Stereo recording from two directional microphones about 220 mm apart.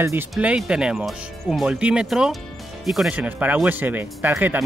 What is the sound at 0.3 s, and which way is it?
Speech, 5° right (ahead or behind).